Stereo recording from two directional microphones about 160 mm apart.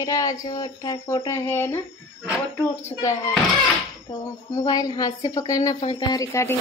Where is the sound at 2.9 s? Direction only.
20° left (ahead or behind).